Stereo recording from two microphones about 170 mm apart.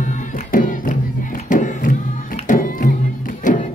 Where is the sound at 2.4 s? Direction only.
50° left (ahead or behind).